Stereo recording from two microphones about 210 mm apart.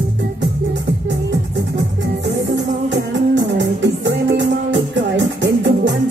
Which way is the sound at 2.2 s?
55° right (ahead or behind).